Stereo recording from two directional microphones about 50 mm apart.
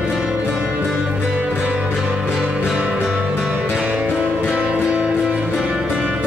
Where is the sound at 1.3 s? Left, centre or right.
Right.